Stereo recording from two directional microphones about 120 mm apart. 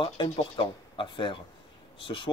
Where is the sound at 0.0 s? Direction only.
45° left (ahead or behind).